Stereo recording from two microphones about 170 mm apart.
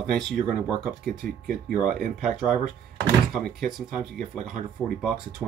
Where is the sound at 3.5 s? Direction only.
Centre (ahead or behind).